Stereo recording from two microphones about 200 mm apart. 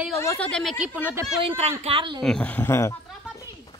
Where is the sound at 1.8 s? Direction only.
25° right (ahead or behind).